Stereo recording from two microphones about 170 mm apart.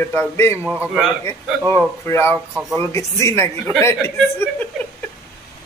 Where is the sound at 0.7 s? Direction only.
5° right (ahead or behind).